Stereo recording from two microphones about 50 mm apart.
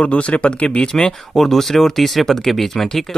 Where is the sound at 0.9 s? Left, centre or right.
Centre.